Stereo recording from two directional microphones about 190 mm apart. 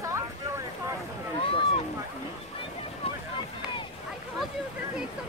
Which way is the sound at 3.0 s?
30° left (ahead or behind).